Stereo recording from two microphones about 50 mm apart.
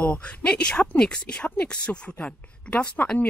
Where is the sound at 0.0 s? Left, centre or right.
Left.